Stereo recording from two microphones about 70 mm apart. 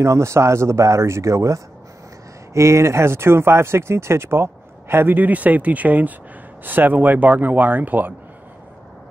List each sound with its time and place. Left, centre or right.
0.0 s speech: right